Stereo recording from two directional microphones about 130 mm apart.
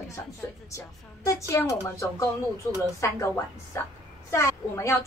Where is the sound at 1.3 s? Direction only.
25° left (ahead or behind).